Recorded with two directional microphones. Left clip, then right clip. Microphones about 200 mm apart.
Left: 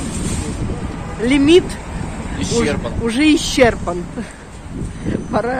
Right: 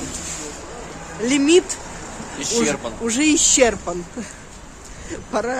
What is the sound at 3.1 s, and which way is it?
Speech, 5° right (ahead or behind).